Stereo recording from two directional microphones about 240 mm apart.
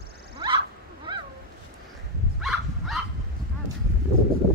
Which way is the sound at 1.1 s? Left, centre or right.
Right.